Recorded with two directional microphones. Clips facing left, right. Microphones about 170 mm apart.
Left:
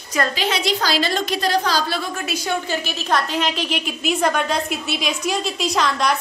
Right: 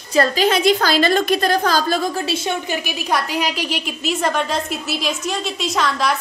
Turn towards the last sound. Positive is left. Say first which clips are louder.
# even
turn(degrees=0)  # may be behind; listen again after turning